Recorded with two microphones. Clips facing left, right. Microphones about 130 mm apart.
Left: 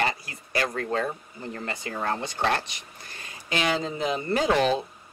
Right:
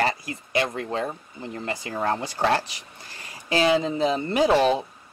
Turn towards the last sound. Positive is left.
turn(degrees=-25)  # may be behind; listen again after turning